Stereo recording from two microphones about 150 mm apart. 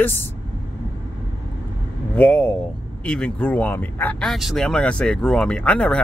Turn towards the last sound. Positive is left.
turn(degrees=5)  # may be behind; listen again after turning